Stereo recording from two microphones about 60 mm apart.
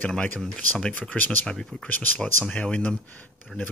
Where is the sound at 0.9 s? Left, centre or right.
Left.